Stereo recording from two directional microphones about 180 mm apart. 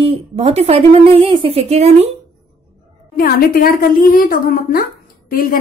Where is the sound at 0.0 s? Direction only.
35° right (ahead or behind).